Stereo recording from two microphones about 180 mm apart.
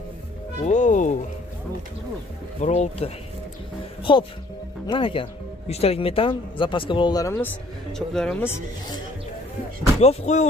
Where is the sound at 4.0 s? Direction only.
30° left (ahead or behind).